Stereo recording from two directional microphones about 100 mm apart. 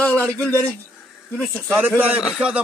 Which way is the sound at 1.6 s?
20° right (ahead or behind).